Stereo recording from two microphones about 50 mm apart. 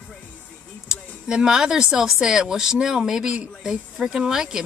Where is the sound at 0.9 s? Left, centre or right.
Centre.